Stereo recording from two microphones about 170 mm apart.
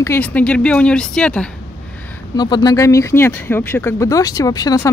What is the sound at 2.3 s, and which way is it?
Speech, 25° left (ahead or behind).